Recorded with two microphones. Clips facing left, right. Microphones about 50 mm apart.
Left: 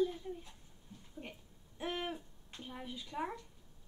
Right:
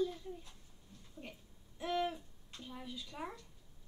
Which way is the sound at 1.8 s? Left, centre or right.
Left.